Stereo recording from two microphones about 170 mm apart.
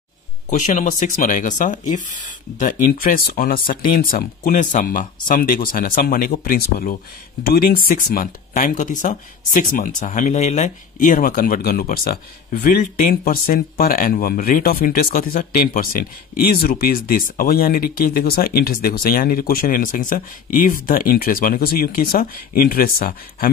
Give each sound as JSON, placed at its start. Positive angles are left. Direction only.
{"t": 0.5, "sound": "speech", "side_deg": 45}